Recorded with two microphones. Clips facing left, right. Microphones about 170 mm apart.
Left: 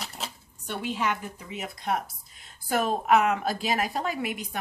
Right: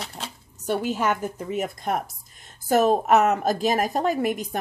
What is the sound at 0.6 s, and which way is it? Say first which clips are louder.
A woman's voice: right 6 dB; 45° right (ahead or behind).